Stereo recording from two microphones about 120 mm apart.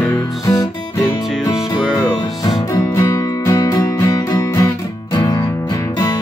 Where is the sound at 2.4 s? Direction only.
30° left (ahead or behind).